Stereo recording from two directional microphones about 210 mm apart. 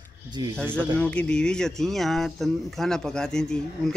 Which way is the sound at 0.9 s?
5° left (ahead or behind).